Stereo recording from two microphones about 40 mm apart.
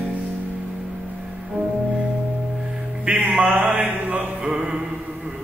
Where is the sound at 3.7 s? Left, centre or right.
Right.